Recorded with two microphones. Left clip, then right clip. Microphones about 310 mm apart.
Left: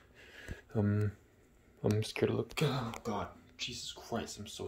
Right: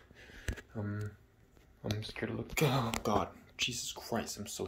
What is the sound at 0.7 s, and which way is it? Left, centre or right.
Speech, left.